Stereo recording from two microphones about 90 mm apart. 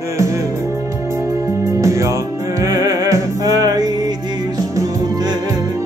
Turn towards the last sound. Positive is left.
turn(degrees=-45)  # may be behind; listen again after turning